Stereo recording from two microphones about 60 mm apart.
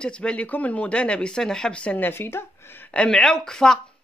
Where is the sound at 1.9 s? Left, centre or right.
Left.